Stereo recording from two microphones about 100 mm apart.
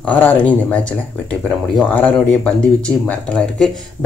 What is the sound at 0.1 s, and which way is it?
Speech, 15° left (ahead or behind).